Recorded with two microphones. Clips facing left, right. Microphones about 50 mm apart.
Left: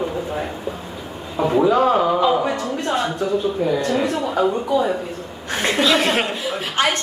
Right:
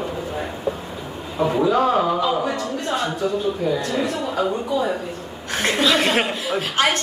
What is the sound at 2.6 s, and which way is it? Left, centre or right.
Speech, left.